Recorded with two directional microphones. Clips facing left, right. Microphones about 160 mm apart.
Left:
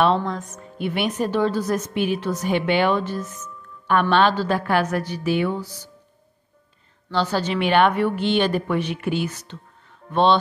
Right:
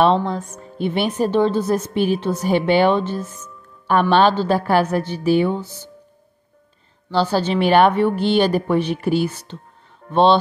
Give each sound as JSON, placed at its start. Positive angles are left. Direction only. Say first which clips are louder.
{"t": 0.0, "sound": "a woman's voice", "louder": "right 3 dB", "side_deg": -30}
{"t": 7.1, "sound": "a woman's voice", "louder": "right 4 dB", "side_deg": -30}